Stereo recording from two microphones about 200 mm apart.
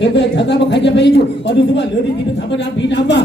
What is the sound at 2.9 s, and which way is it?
Speech, 60° left (ahead or behind).